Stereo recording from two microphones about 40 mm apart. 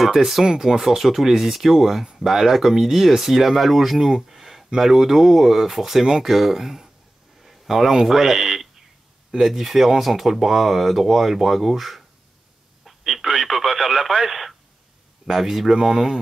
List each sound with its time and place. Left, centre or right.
0.0 s speech: centre
4.1 s a sound: centre
4.7 s speech: centre